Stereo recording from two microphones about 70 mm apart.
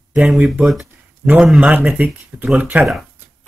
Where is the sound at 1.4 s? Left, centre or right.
Centre.